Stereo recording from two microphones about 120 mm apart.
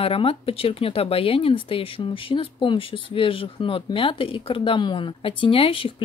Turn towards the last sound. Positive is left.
turn(degrees=50)  # may be behind; listen again after turning